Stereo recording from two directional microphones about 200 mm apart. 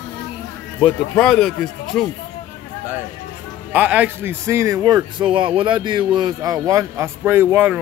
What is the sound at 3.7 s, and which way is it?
Speech, 5° right (ahead or behind).